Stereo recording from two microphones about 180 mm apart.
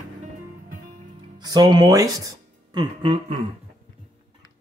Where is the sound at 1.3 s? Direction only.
25° right (ahead or behind).